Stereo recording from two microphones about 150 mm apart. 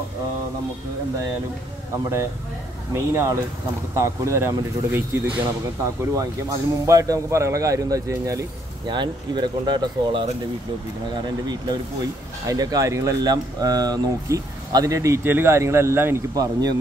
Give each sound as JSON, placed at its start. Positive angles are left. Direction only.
{"t": 2.9, "sound": "speech", "side_deg": -20}
{"t": 11.4, "sound": "speech", "side_deg": -25}